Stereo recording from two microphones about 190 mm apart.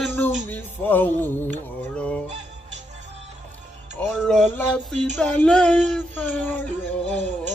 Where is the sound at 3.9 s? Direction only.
5° left (ahead or behind).